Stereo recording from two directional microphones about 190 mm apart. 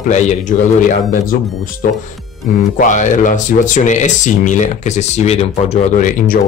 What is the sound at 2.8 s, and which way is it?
A man's voice, 40° left (ahead or behind).